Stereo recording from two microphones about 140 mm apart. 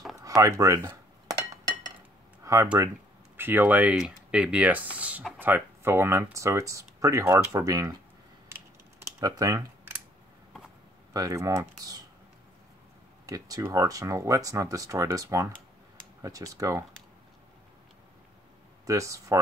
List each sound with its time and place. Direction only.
0.2 s a sound: 25° right (ahead or behind)
2.4 s speech: 20° right (ahead or behind)
8.5 s typing: 20° right (ahead or behind)
11.1 s speech: 25° right (ahead or behind)
13.3 s speech: 25° right (ahead or behind)
18.9 s speech: 20° right (ahead or behind)